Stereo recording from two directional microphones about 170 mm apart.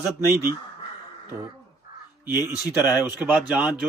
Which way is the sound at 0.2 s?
15° right (ahead or behind).